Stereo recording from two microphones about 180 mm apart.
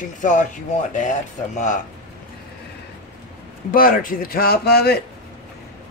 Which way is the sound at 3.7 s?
50° left (ahead or behind).